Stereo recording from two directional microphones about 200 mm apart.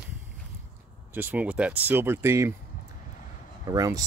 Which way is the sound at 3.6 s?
15° right (ahead or behind).